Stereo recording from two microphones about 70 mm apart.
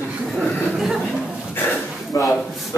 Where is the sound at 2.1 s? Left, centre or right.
Left.